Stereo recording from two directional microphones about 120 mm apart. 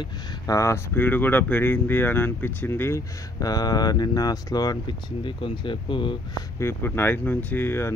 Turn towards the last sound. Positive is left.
turn(degrees=20)  # may be behind; listen again after turning